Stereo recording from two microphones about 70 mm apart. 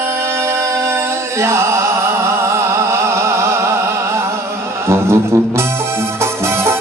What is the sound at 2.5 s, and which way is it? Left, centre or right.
Music, right.